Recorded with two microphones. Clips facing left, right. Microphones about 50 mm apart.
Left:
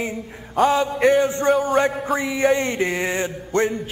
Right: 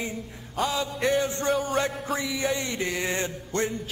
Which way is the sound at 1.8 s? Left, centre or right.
Centre.